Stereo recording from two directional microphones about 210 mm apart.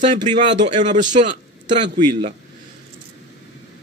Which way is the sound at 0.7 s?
35° right (ahead or behind).